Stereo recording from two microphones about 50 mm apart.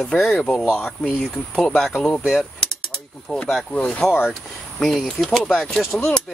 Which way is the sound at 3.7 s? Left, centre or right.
Left.